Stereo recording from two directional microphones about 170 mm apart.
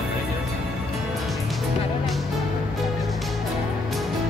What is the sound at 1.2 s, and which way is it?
Music, centre (ahead or behind).